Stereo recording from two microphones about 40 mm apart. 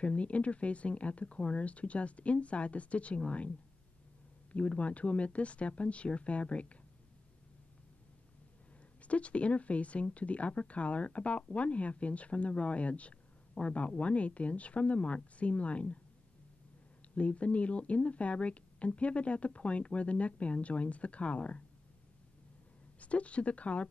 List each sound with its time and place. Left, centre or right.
0.0 s speech: left
9.0 s speech: left
17.1 s speech: left
22.9 s speech: left